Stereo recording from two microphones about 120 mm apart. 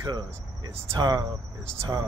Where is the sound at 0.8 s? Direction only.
35° right (ahead or behind).